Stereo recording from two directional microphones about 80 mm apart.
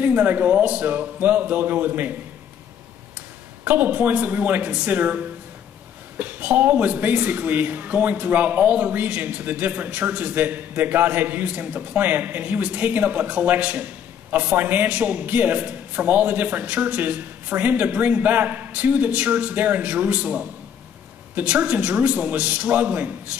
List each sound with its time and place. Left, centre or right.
0.0 s speech: right
3.6 s a man's voice: right